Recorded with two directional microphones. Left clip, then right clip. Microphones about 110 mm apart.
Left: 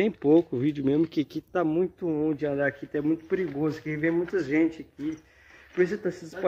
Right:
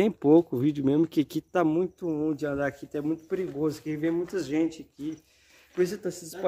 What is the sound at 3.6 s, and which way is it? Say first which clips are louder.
Speech: left 1 dB; 15° right (ahead or behind).